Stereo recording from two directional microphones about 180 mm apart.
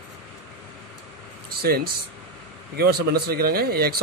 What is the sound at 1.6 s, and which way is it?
A man's voice, 55° right (ahead or behind).